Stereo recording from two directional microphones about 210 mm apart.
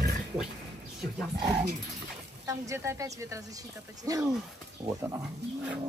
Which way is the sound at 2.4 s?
15° right (ahead or behind).